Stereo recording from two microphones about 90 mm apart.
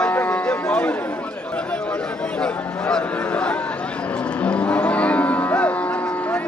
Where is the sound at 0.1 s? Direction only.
15° left (ahead or behind).